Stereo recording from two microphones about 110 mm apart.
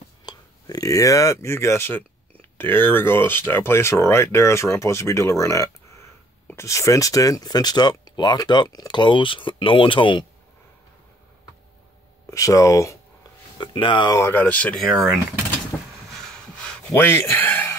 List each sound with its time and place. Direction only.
0.2 s speech: 40° left (ahead or behind)
12.3 s speech: 30° left (ahead or behind)
13.6 s speech: 50° left (ahead or behind)
14.1 s speech: 25° left (ahead or behind)
14.4 s speech: 15° left (ahead or behind)
15.7 s a sound: 10° left (ahead or behind)
16.9 s speech: 20° left (ahead or behind)